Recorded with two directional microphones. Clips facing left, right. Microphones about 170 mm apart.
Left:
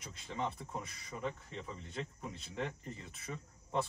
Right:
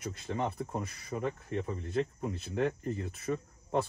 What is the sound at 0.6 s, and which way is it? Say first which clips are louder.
Speech: right 7 dB; 35° right (ahead or behind).